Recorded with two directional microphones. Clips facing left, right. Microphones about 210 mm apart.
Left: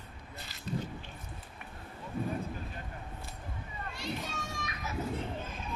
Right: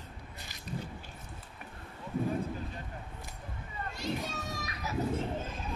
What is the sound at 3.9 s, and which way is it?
Children playing, 40° right (ahead or behind).